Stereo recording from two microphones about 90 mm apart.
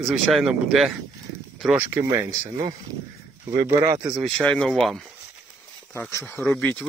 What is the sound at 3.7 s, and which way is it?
Speech, 40° right (ahead or behind).